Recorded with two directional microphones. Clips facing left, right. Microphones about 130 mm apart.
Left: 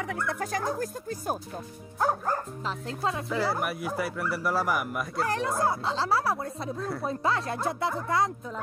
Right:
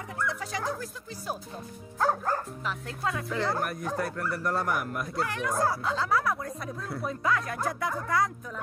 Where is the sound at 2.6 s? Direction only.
30° left (ahead or behind).